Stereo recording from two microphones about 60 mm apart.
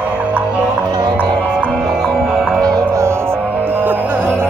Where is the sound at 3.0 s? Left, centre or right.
Right.